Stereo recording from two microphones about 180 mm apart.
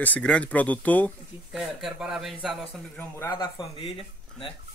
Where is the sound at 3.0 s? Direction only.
15° left (ahead or behind).